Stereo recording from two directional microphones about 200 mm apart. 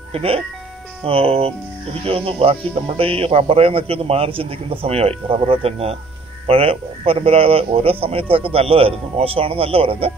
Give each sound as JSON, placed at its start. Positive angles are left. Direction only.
{"t": 0.1, "sound": "speech", "side_deg": -30}